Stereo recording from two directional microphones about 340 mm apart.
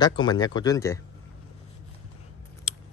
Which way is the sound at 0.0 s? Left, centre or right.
Centre.